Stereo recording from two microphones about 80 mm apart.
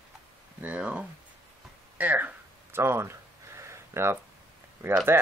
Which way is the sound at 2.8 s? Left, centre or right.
Right.